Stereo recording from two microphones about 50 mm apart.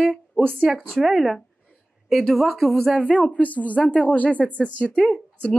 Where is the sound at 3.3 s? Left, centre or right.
Left.